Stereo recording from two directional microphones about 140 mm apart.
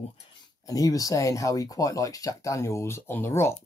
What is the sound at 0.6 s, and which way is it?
Speech, 25° left (ahead or behind).